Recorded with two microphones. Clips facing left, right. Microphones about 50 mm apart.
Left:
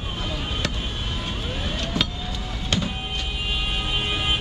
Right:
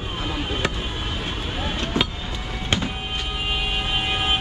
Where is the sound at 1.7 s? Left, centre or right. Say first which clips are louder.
Right 3 dB; right.